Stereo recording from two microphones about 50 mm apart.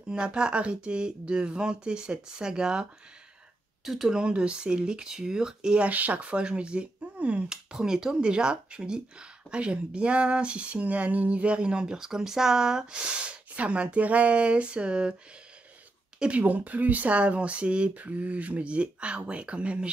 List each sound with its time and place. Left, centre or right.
0.1 s speech: centre
3.8 s speech: centre
4.1 s speech: centre
5.9 s speech: right
7.7 s speech: centre
16.2 s speech: right